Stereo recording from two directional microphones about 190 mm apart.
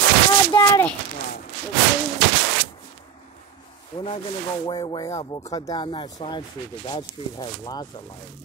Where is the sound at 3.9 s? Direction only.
25° left (ahead or behind).